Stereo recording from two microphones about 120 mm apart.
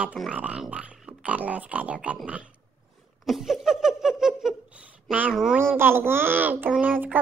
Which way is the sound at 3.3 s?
5° right (ahead or behind).